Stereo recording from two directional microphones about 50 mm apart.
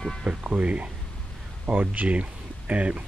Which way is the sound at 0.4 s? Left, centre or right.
Right.